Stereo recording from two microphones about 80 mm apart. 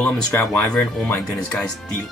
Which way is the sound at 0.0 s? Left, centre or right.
Left.